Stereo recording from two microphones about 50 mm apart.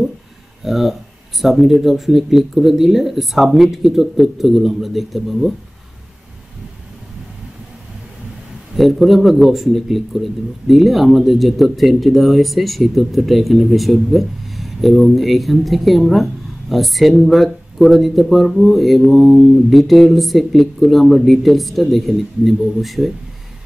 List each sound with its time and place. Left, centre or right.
0.7 s speech: centre
8.7 s speech: centre